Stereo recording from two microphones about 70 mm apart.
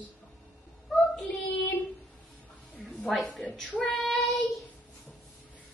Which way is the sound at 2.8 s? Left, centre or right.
Centre.